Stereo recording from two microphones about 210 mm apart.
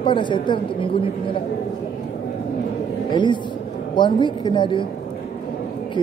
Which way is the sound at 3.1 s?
20° left (ahead or behind).